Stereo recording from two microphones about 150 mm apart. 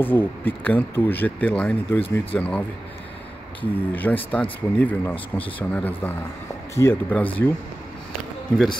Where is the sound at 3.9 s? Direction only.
10° left (ahead or behind).